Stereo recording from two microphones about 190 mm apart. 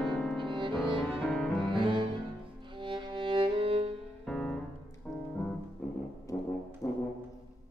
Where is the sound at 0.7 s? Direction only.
5° left (ahead or behind).